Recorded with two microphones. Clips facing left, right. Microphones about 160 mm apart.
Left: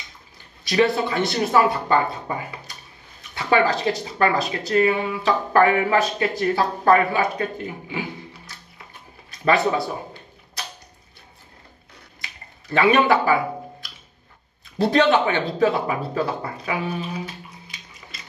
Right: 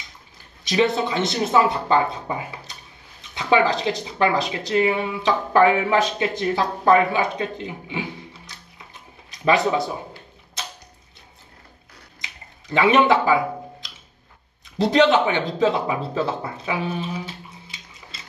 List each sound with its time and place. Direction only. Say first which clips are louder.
0.7 s speech: left 1 dB; 20° right (ahead or behind)
12.2 s a sound: even; 20° right (ahead or behind)
14.8 s speech: right 1 dB; 20° right (ahead or behind)
16.5 s bathtub: even; 25° right (ahead or behind)